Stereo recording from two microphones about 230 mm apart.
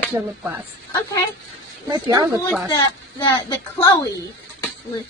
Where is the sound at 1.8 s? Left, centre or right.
Centre.